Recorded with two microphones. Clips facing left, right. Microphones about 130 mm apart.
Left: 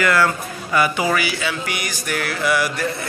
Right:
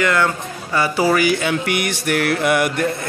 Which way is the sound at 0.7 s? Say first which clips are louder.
Right 2 dB; 30° right (ahead or behind).